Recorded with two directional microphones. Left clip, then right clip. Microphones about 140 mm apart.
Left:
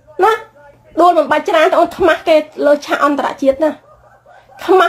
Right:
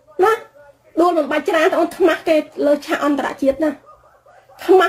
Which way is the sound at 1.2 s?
20° right (ahead or behind).